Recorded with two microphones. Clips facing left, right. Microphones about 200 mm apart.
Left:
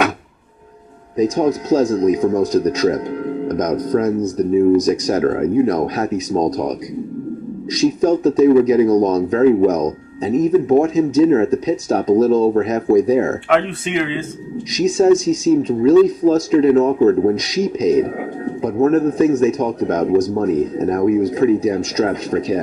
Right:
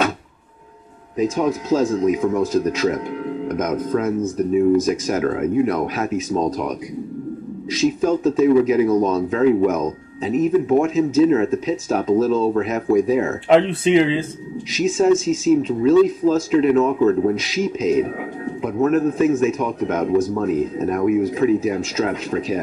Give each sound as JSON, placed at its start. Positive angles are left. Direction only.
{"t": 1.1, "sound": "speech", "side_deg": 35}
{"t": 13.5, "sound": "speech", "side_deg": -30}
{"t": 14.7, "sound": "speech", "side_deg": 35}